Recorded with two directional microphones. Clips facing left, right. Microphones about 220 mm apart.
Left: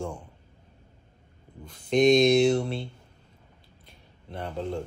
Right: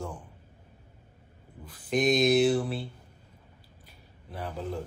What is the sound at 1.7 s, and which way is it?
Speech, 5° right (ahead or behind).